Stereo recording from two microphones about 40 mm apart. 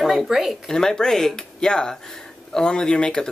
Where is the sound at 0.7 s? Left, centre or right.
Centre.